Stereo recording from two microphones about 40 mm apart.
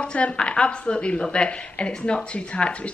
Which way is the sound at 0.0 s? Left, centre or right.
Left.